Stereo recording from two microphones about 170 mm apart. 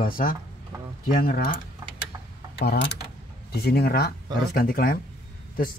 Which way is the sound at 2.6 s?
75° left (ahead or behind).